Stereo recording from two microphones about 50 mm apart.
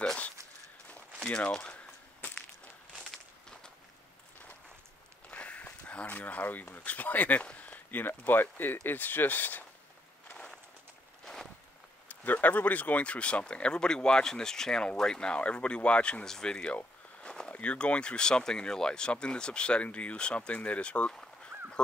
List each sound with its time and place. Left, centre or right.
1.2 s speech: left
5.3 s speech: left
7.5 s a sound: left
8.2 s speech: left
12.3 s speech: left
21.5 s a sound: right